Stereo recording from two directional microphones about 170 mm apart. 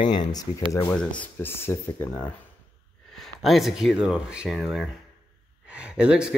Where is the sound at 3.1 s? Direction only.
Centre (ahead or behind).